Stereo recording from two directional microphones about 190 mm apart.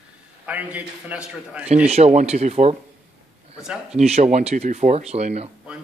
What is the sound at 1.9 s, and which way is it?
Speech, 35° right (ahead or behind).